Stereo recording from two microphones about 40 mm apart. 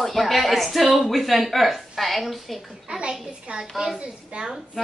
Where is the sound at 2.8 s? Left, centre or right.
Right.